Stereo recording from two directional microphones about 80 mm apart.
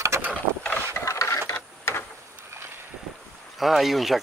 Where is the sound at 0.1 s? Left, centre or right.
Right.